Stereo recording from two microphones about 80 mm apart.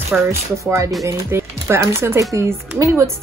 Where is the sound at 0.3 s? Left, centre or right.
Right.